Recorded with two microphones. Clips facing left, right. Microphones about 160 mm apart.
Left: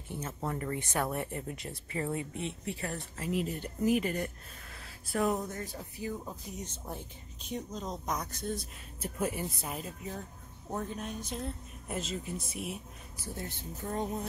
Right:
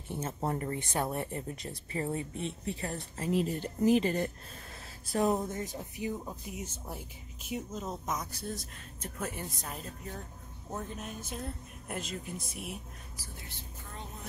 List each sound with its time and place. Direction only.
0.2 s a woman's voice: 30° right (ahead or behind)
6.2 s speech: 10° right (ahead or behind)
13.4 s speech: 45° left (ahead or behind)